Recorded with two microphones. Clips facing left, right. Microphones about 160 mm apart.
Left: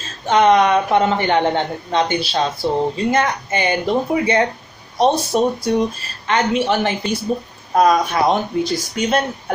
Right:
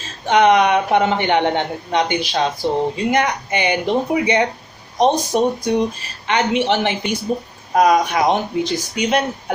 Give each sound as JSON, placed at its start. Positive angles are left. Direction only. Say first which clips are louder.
{"t": 0.3, "sound": "a woman's voice", "louder": "even", "side_deg": -15}